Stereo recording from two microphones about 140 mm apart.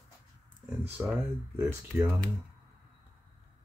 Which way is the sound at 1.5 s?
20° right (ahead or behind).